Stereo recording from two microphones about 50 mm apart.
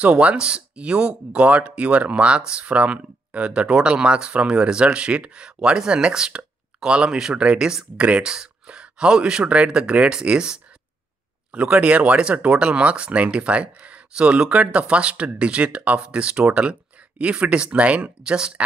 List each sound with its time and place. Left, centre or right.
0.0 s speech: right